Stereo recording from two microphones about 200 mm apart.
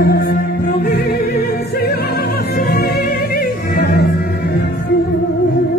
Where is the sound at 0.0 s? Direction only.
45° left (ahead or behind).